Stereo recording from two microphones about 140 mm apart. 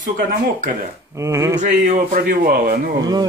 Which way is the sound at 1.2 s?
20° right (ahead or behind).